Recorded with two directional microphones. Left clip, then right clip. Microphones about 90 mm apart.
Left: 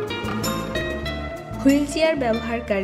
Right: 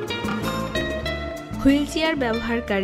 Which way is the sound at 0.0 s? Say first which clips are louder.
Even; 20° left (ahead or behind).